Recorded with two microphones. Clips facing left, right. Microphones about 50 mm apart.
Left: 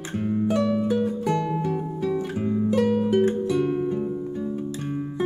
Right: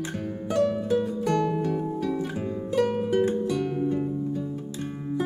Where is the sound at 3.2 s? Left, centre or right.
Left.